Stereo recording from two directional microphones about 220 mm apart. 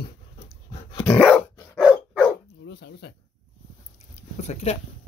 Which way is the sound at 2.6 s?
50° left (ahead or behind).